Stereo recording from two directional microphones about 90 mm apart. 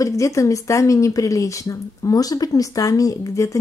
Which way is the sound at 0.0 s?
35° left (ahead or behind).